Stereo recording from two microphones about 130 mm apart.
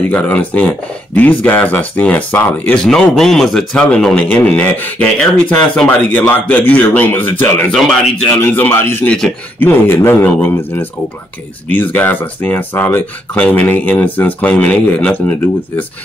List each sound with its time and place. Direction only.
0.1 s speech: 15° left (ahead or behind)
11.7 s speech: 15° left (ahead or behind)